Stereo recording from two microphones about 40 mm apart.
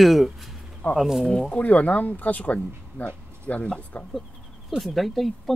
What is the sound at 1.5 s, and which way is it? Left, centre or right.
Speech, left.